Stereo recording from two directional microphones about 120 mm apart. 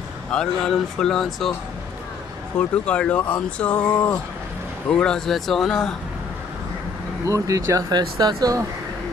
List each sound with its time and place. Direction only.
0.3 s speech: 5° left (ahead or behind)
2.8 s speech: 10° left (ahead or behind)
7.2 s speech: 25° right (ahead or behind)